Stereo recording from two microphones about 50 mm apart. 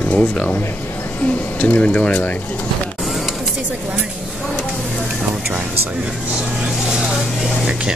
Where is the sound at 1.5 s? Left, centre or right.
Left.